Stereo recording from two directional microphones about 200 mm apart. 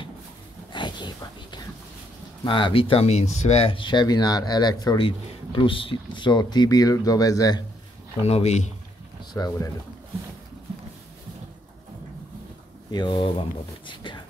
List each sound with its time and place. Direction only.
0.7 s speech: 20° left (ahead or behind)
8.3 s speech: 35° left (ahead or behind)
9.3 s speech: 20° left (ahead or behind)
12.9 s speech: 25° left (ahead or behind)